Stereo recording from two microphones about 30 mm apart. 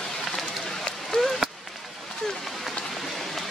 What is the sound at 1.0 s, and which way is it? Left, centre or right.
Chop, centre.